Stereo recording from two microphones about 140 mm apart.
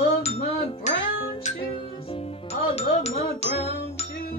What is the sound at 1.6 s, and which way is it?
Music, 40° left (ahead or behind).